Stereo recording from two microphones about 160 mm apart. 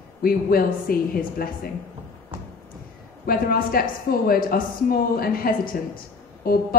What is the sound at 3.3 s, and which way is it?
Speech, 65° left (ahead or behind).